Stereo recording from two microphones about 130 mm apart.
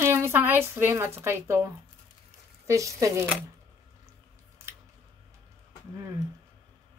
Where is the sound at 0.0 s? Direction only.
20° right (ahead or behind).